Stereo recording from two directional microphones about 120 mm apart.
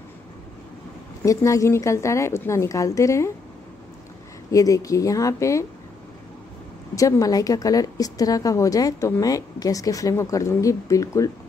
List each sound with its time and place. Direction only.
1.2 s a woman's voice: 25° left (ahead or behind)
4.5 s a woman's voice: 30° left (ahead or behind)
7.0 s a woman's voice: 30° left (ahead or behind)